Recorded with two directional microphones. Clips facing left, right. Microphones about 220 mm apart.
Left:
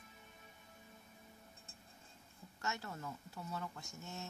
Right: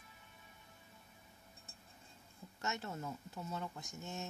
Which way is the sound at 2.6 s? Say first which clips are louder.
Right 2 dB; 20° right (ahead or behind).